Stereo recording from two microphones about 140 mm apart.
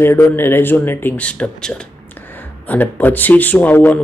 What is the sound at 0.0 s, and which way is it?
Speech, 15° left (ahead or behind).